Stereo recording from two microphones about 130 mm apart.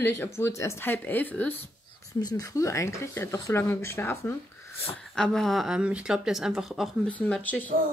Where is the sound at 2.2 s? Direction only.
30° left (ahead or behind).